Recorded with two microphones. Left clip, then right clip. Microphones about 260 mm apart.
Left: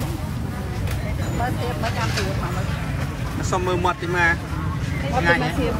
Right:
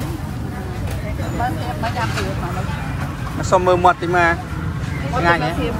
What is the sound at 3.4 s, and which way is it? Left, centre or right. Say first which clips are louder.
Speech: right 9 dB; centre.